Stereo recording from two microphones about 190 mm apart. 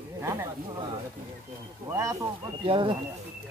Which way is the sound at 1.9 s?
15° right (ahead or behind).